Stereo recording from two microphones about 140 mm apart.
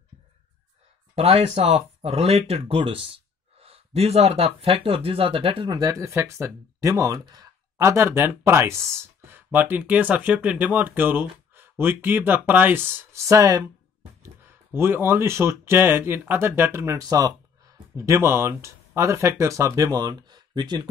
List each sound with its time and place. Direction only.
1.1 s speech: 50° right (ahead or behind); by 20.9 s 30° right (ahead or behind)